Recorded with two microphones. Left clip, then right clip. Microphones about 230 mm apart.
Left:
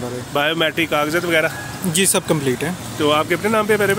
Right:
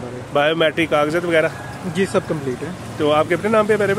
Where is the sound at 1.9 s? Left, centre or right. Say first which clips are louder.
Left 1 dB; left.